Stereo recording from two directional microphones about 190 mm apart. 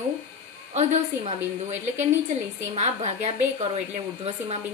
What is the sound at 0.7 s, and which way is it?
A woman's voice, 35° right (ahead or behind).